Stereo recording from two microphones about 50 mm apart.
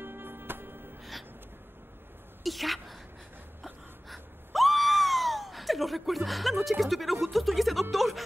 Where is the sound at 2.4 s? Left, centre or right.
Centre.